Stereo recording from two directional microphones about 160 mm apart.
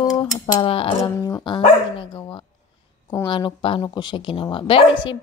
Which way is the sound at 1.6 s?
30° left (ahead or behind).